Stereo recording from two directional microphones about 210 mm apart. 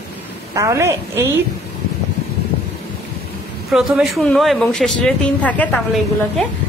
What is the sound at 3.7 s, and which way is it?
Speech, centre (ahead or behind).